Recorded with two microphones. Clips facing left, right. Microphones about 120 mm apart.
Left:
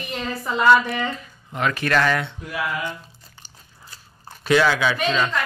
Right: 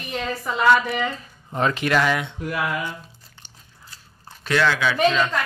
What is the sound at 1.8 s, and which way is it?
Speech, 10° right (ahead or behind).